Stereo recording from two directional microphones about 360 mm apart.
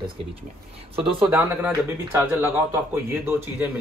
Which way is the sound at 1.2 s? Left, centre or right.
Centre.